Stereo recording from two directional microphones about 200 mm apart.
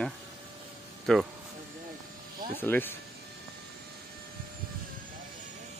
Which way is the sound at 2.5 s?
10° left (ahead or behind).